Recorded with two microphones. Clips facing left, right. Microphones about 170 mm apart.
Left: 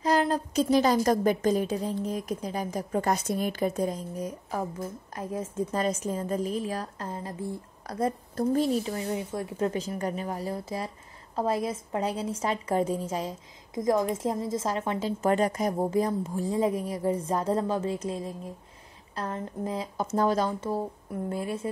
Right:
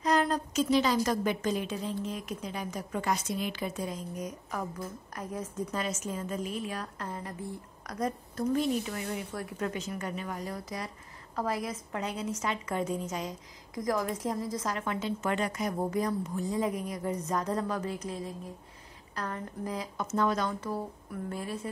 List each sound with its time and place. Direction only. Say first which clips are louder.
0.0 s a sound: left 3 dB; 30° left (ahead or behind)
0.7 s a woman's voice: left 4 dB; 45° left (ahead or behind)
15.8 s a woman's voice: left 3 dB; 25° left (ahead or behind)